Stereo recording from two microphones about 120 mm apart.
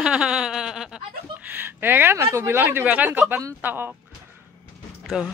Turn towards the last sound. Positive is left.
turn(degrees=-5)  # may be behind; listen again after turning